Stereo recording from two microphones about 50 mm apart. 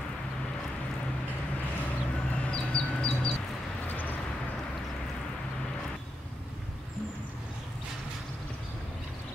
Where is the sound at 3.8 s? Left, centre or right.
Left.